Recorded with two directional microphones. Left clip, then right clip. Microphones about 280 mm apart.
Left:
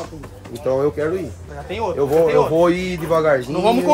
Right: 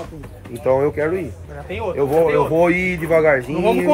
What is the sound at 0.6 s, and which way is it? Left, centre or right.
Speech, centre.